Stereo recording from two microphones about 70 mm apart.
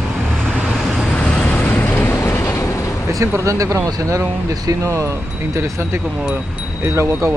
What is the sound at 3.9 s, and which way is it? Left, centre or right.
Speech, right.